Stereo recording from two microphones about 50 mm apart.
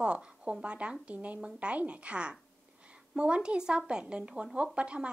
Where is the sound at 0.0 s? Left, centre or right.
Right.